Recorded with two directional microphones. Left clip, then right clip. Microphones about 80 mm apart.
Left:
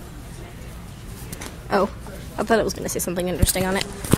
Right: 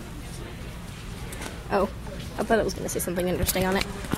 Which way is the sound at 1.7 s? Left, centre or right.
Left.